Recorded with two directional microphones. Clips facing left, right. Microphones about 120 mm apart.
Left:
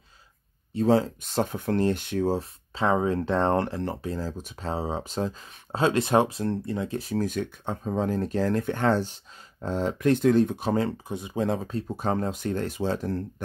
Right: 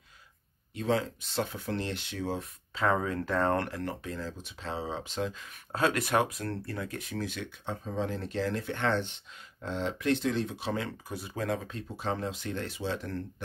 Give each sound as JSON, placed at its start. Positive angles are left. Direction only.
{"t": 0.7, "sound": "speech", "side_deg": 35}
{"t": 11.1, "sound": "speech", "side_deg": 20}
{"t": 11.6, "sound": "speech", "side_deg": 40}